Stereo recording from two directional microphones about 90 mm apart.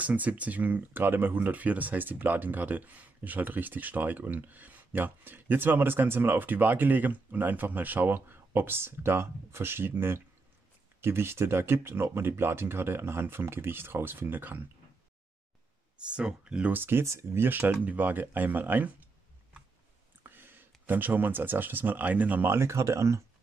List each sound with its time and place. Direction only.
0.0 s speech: 15° right (ahead or behind)
16.0 s speech: 10° right (ahead or behind)
20.2 s speech: 25° right (ahead or behind)